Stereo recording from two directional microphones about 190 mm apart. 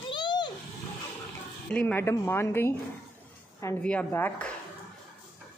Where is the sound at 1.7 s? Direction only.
10° left (ahead or behind).